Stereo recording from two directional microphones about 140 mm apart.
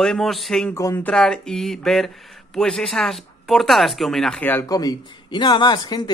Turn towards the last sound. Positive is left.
turn(degrees=30)  # may be behind; listen again after turning